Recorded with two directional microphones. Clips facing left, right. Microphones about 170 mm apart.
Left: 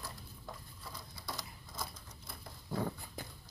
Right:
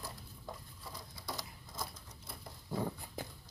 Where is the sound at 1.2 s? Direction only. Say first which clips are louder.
Right 1 dB; 15° right (ahead or behind).